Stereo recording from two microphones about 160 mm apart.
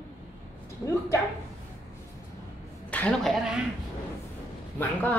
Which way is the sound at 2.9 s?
10° left (ahead or behind).